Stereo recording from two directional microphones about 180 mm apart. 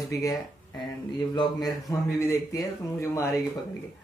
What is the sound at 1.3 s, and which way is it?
Speech, 25° left (ahead or behind).